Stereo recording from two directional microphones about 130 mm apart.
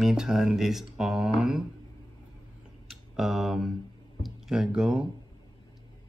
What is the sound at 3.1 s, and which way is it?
Speech, 5° right (ahead or behind).